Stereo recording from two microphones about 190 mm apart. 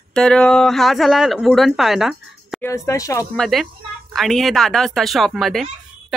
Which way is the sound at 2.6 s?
15° left (ahead or behind).